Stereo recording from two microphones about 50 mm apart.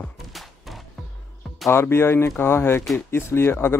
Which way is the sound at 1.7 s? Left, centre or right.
Left.